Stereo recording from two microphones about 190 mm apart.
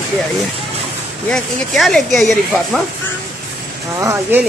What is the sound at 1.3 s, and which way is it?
A woman's voice, centre (ahead or behind).